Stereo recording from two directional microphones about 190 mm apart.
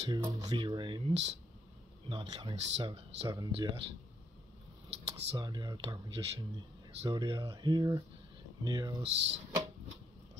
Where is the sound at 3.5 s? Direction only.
30° right (ahead or behind).